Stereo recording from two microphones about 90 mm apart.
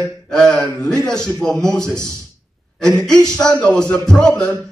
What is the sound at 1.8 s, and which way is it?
Speech, 35° right (ahead or behind).